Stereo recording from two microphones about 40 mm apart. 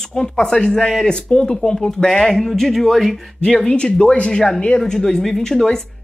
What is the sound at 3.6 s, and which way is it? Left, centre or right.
Speech, left.